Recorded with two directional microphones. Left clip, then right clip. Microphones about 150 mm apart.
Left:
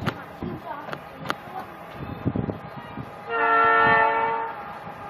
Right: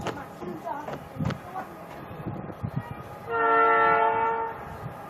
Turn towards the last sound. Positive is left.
turn(degrees=-5)  # may be behind; listen again after turning